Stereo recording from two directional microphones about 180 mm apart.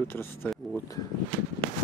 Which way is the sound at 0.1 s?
10° left (ahead or behind).